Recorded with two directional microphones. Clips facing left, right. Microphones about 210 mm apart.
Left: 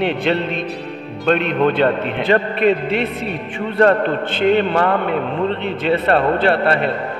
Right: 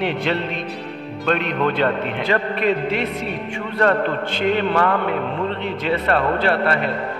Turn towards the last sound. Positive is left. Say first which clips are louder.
# left 3 dB
turn(degrees=25)  # may be behind; listen again after turning